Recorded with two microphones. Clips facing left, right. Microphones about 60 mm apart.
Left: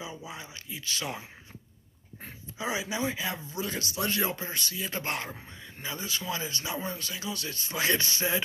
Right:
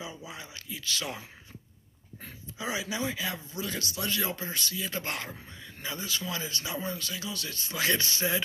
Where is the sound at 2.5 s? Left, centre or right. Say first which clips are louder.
Left 1 dB; centre.